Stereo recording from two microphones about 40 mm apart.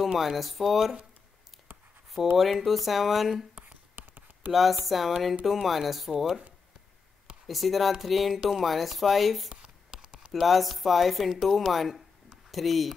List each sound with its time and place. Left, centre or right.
0.0 s speech: centre
2.3 s speech: centre
3.5 s a sound: right
4.5 s speech: centre
7.4 s speech: centre
9.5 s a sound: right
10.3 s speech: centre